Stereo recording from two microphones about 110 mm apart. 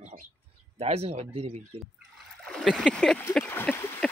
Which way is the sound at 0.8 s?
70° right (ahead or behind).